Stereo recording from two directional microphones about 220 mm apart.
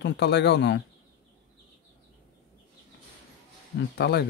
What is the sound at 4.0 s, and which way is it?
Speech, 50° left (ahead or behind).